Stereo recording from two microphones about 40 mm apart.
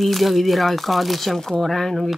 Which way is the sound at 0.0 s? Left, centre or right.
Centre.